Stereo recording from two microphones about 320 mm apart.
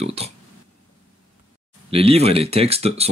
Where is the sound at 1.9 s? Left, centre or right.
Centre.